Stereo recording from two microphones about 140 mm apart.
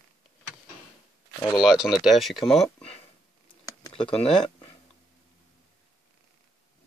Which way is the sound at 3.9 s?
40° left (ahead or behind).